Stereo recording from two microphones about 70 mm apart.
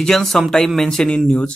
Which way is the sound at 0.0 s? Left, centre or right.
Centre.